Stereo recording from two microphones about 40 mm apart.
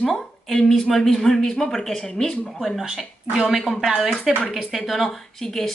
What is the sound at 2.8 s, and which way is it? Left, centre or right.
Speech, centre.